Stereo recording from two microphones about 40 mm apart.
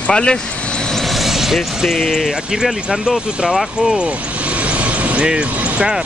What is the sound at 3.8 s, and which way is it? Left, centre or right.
Vehicle, right.